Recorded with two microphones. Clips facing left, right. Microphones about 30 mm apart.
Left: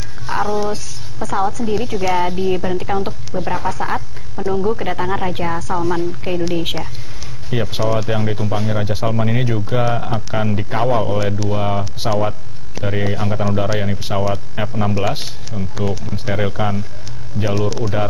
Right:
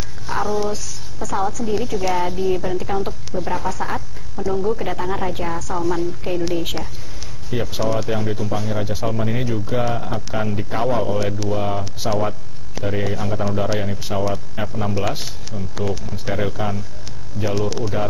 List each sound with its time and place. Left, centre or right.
0.3 s speech: left
11.1 s speech: centre
11.4 s speech: left
12.0 s a man's voice: left
17.5 s speech: centre